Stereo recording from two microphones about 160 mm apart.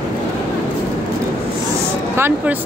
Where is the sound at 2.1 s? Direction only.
15° right (ahead or behind).